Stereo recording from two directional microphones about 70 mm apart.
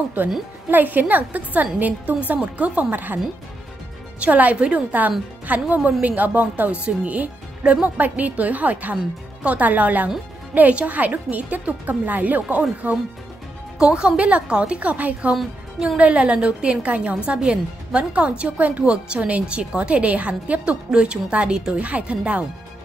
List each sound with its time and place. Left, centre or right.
0.7 s speech: right
4.2 s speech: right
13.7 s a woman's voice: centre